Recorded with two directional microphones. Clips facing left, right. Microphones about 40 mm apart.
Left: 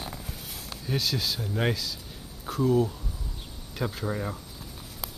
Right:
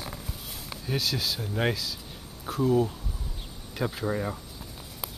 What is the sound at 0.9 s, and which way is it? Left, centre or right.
Speech, centre.